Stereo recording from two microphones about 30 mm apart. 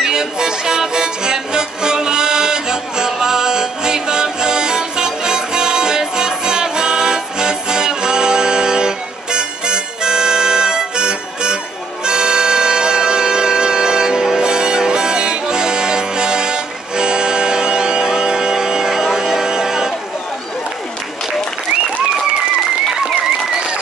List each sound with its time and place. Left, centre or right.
0.0 s music: right